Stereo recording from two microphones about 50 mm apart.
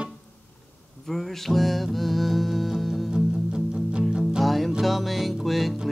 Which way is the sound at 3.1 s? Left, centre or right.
Centre.